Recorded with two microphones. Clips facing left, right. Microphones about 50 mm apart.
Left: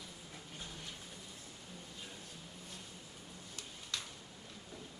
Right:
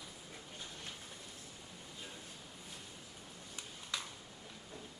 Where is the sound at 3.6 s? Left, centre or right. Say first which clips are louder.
Right 1 dB; centre.